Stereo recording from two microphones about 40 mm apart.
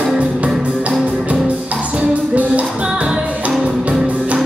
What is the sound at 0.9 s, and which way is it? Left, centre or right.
Music, right.